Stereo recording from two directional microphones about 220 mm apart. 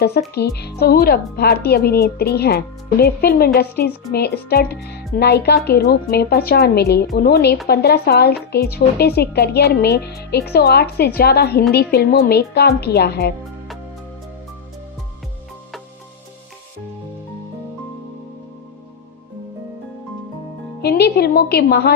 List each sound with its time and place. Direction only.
0.3 s speech: 45° left (ahead or behind)
20.8 s speech: 45° left (ahead or behind)